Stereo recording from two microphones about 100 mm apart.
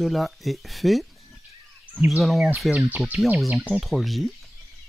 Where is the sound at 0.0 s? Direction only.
Centre (ahead or behind).